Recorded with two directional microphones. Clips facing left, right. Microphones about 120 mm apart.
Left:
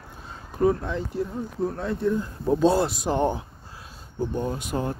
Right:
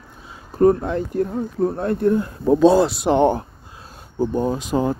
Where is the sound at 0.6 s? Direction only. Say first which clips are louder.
Right 7 dB; 50° right (ahead or behind); by 3.4 s 75° right (ahead or behind).